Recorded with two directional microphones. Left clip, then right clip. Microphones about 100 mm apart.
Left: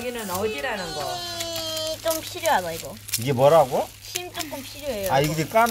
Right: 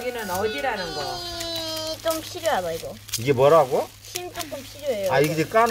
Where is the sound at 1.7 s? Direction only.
5° right (ahead or behind).